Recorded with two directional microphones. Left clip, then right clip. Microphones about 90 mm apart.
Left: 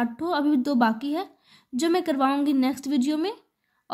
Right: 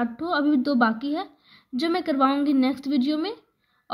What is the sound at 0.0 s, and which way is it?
A woman's voice, 35° left (ahead or behind).